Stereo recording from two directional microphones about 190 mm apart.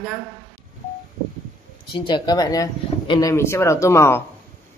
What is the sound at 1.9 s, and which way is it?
Speech, 25° left (ahead or behind).